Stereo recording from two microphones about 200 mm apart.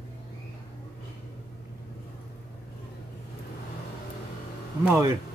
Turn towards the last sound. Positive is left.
turn(degrees=-10)  # may be behind; listen again after turning